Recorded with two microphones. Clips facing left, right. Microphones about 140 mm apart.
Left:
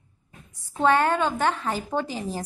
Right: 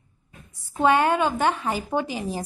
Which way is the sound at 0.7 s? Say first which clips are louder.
Right 1 dB; 10° right (ahead or behind).